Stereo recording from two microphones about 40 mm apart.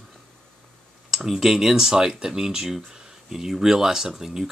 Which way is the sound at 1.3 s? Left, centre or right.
Centre.